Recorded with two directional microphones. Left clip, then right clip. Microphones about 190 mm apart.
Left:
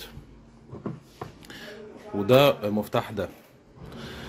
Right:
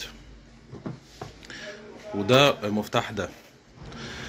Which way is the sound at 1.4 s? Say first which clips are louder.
Right 3 dB; 20° left (ahead or behind).